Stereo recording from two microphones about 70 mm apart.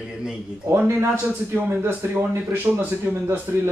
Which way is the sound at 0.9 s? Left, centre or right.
Right.